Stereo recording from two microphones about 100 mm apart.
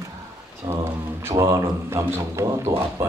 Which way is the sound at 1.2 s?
35° right (ahead or behind).